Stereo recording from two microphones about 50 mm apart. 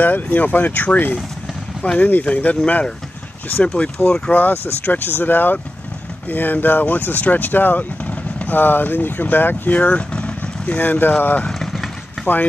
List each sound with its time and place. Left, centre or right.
0.0 s speech: left
2.2 s speech: left
4.3 s speech: left
10.8 s speech: left
11.4 s vehicle: centre